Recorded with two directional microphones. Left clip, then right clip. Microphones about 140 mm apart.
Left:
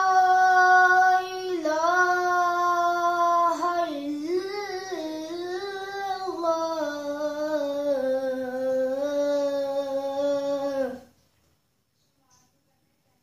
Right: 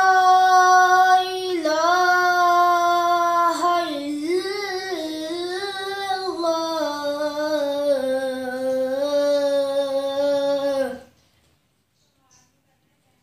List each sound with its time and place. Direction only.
0.1 s child singing: 10° left (ahead or behind)